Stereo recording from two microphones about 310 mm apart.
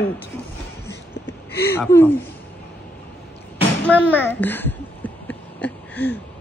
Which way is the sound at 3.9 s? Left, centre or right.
Centre.